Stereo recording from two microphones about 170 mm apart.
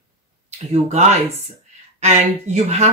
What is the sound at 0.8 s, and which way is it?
Speech, 45° right (ahead or behind).